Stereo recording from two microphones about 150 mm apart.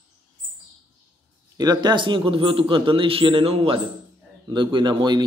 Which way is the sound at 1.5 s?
25° right (ahead or behind).